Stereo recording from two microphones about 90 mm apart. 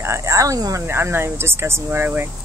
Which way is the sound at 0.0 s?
35° right (ahead or behind).